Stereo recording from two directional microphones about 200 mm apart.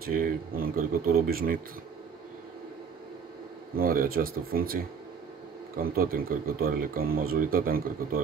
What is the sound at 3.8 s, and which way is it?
Speech, 45° right (ahead or behind).